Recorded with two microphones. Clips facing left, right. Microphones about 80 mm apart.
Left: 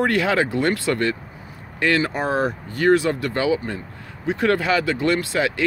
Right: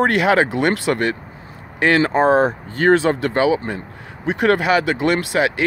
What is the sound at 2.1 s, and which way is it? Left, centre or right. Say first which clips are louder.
Speech: right 7 dB; right.